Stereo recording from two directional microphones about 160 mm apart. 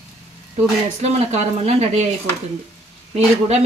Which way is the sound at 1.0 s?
40° right (ahead or behind).